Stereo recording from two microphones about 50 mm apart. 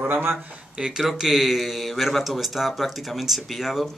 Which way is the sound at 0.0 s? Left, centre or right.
Right.